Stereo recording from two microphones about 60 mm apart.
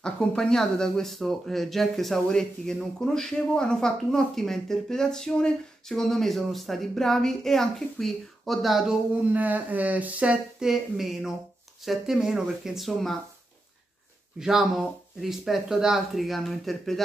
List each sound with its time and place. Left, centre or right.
0.0 s speech: centre
9.2 s speech: right
10.6 s speech: centre
14.4 s speech: centre